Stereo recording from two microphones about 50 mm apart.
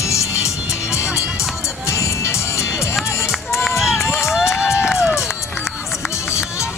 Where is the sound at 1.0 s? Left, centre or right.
Centre.